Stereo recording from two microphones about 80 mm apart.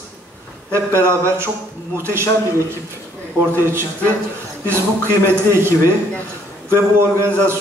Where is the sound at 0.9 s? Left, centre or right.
Right.